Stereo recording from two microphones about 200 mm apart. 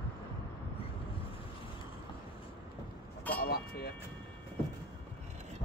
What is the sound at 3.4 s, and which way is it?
Vehicle, 50° left (ahead or behind).